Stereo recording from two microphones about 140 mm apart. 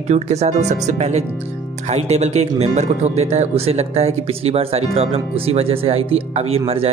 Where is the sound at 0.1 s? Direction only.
50° right (ahead or behind).